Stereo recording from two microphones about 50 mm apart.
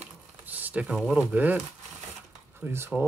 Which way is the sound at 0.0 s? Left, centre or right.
Right.